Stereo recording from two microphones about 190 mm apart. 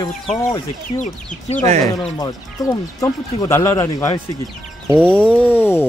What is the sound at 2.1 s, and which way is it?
Speech, 20° left (ahead or behind).